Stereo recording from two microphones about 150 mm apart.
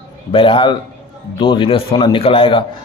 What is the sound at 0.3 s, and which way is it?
A man's voice, 35° left (ahead or behind).